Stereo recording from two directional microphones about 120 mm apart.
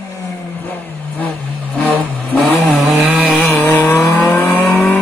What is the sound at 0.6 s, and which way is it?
Vehicle, 15° left (ahead or behind).